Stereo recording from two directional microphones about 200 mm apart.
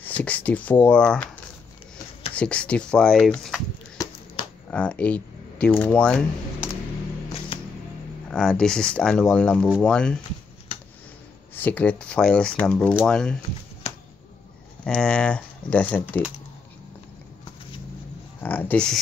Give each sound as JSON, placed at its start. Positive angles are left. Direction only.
{"t": 0.2, "sound": "speech", "side_deg": 5}
{"t": 2.3, "sound": "speech", "side_deg": 5}
{"t": 4.6, "sound": "speech", "side_deg": 5}
{"t": 7.5, "sound": "a sound", "side_deg": 25}
{"t": 8.3, "sound": "speech", "side_deg": 5}
{"t": 11.5, "sound": "speech", "side_deg": 10}
{"t": 13.9, "sound": "a sound", "side_deg": 30}
{"t": 14.9, "sound": "speech", "side_deg": 5}
{"t": 18.4, "sound": "speech", "side_deg": 10}